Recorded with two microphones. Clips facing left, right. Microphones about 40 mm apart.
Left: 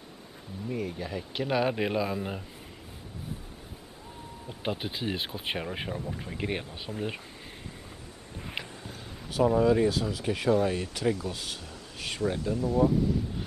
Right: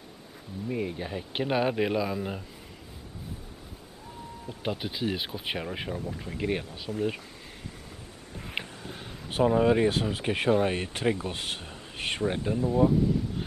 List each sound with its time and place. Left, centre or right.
0.7 s speech: centre
4.5 s speech: centre
8.5 s speech: right